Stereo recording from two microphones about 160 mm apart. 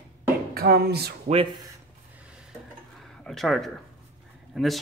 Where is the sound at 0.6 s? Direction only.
80° right.